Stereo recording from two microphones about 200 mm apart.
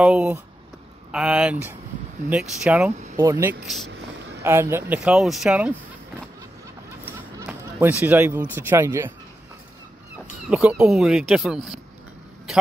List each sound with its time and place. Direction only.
0.0 s speech: 5° right (ahead or behind)
7.1 s speech: 10° right (ahead or behind)
10.5 s speech: 5° right (ahead or behind)